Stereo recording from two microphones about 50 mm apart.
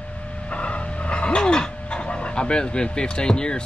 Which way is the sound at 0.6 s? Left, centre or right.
Left.